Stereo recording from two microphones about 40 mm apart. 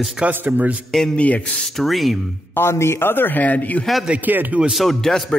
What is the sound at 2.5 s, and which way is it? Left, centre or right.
Speech, left.